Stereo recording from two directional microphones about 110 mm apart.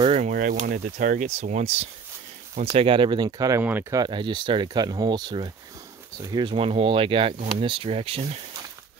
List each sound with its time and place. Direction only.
0.1 s speech: 90° right
2.6 s speech: 60° right (ahead or behind)
3.3 s speech: 35° right (ahead or behind)
6.4 s speech: 55° right (ahead or behind)